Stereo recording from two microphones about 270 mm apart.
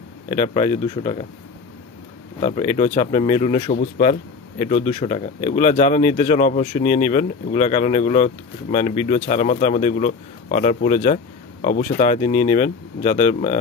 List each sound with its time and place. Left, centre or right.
0.3 s speech: left
2.4 s speech: left